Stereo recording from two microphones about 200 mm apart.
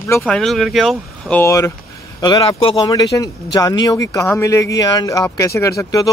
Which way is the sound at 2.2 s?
25° left (ahead or behind).